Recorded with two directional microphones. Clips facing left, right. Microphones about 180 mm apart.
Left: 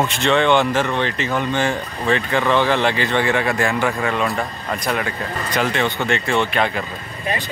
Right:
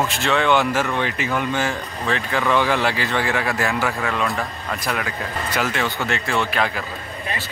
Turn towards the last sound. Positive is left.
turn(degrees=0)  # may be behind; listen again after turning